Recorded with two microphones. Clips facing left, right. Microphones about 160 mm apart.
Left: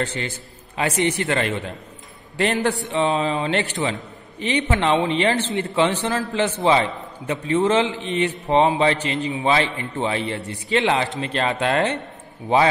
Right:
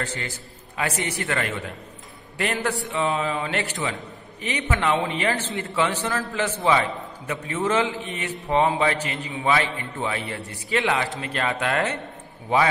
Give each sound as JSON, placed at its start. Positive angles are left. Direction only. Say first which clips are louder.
{"t": 0.7, "sound": "a man's voice", "louder": "left 6 dB", "side_deg": 25}